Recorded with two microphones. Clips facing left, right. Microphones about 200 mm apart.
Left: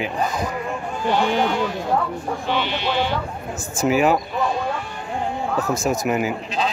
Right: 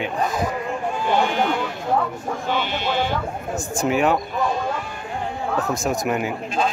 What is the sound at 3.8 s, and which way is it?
Speech, 5° left (ahead or behind).